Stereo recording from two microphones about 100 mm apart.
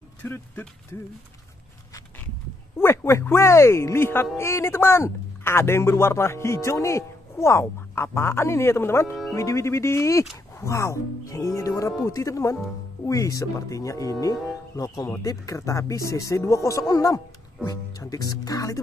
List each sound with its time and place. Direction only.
0.2 s a man's voice: 20° left (ahead or behind)
2.8 s a man's voice: 25° left (ahead or behind)